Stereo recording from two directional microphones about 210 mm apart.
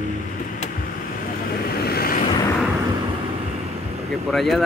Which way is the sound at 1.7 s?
45° left (ahead or behind).